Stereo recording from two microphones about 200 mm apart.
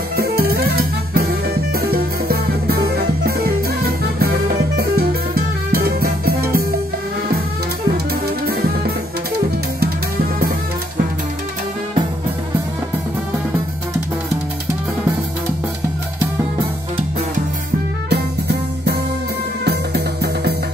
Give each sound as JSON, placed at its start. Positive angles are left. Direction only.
{"t": 0.1, "sound": "music", "side_deg": -50}
{"t": 18.1, "sound": "music", "side_deg": -55}